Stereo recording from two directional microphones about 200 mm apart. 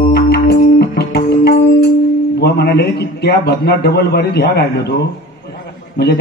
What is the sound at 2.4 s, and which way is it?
A man's voice, 55° left (ahead or behind).